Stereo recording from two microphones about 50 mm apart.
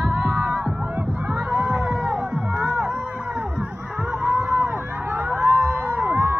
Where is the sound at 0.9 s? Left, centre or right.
Right.